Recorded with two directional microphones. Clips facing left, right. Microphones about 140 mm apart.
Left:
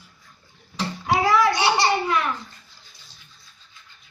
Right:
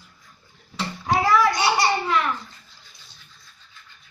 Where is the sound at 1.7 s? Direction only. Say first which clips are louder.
Even; 15° left (ahead or behind).